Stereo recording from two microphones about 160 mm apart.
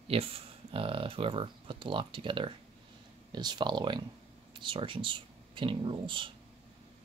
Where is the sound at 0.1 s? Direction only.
35° right (ahead or behind).